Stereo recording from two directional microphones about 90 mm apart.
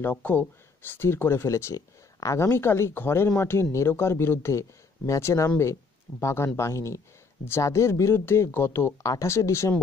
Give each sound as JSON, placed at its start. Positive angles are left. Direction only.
{"t": 0.0, "sound": "speech", "side_deg": 20}